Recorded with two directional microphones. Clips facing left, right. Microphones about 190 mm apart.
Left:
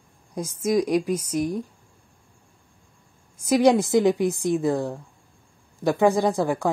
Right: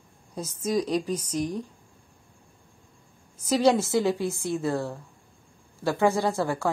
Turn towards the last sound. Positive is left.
turn(degrees=15)  # may be behind; listen again after turning